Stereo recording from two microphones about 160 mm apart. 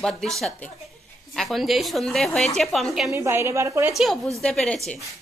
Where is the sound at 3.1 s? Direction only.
15° right (ahead or behind).